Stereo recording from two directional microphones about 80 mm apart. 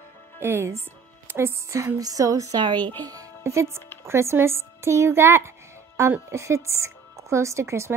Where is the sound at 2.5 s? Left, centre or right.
Right.